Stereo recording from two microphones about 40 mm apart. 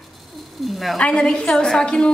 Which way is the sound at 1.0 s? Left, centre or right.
Left.